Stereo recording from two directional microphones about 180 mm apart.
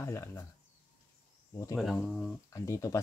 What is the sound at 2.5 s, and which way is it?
Speech, 15° left (ahead or behind).